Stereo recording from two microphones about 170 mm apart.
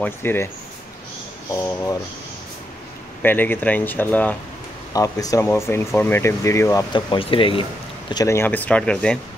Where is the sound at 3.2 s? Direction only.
10° left (ahead or behind).